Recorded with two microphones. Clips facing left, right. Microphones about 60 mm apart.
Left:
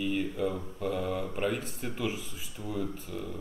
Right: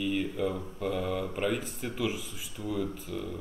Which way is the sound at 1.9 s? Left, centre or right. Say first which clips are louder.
Right 2 dB; centre.